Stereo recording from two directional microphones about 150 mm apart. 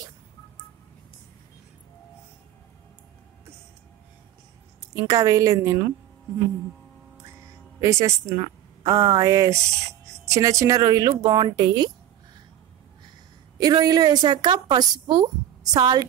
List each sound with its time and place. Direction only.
4.9 s a woman's voice: 25° right (ahead or behind)
7.8 s a woman's voice: 20° right (ahead or behind)
13.6 s a woman's voice: 25° right (ahead or behind)